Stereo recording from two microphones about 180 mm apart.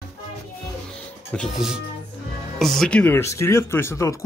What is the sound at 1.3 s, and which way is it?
Speech, centre (ahead or behind).